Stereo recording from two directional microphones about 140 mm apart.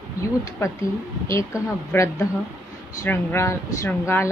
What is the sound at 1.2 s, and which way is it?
A woman's voice, 20° left (ahead or behind).